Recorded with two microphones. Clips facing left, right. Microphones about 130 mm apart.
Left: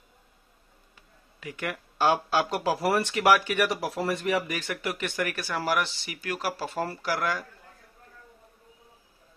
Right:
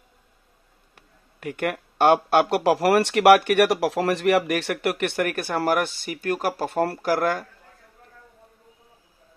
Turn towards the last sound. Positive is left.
turn(degrees=-50)  # may be behind; listen again after turning